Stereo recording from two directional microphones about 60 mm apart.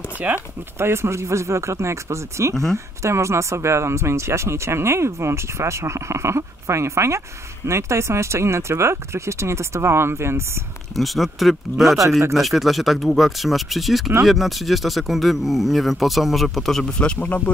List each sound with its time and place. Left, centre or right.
0.3 s speech: right
0.7 s speech: right
11.0 s speech: centre